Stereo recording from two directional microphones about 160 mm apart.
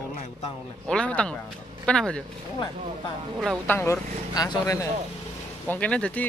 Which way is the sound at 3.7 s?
15° left (ahead or behind).